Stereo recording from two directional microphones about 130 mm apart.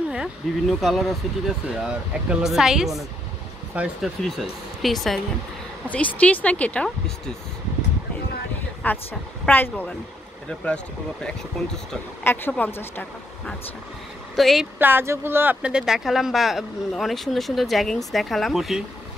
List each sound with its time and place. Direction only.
0.1 s speech: centre (ahead or behind)
5.9 s speech: 10° left (ahead or behind)
8.8 s speech: 15° left (ahead or behind)
11.6 s speech: 5° left (ahead or behind)
12.2 s speech: 15° left (ahead or behind)
14.3 s a woman's voice: centre (ahead or behind)
14.8 s speech: 15° right (ahead or behind)